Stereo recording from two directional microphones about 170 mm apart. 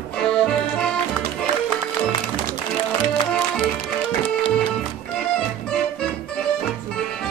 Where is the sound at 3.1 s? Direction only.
30° left (ahead or behind).